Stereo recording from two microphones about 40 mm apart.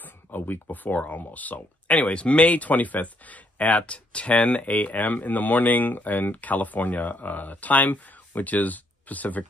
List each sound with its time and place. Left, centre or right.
0.0 s speech: left